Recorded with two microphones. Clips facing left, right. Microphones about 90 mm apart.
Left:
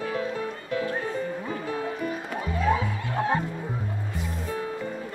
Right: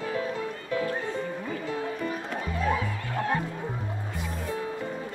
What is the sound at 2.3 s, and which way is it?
Music, 15° left (ahead or behind).